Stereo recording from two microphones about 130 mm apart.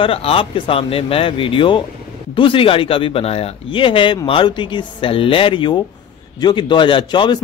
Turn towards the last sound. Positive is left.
turn(degrees=40)  # may be behind; listen again after turning